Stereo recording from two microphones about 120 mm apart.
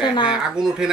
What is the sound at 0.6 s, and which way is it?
Speech, 5° right (ahead or behind).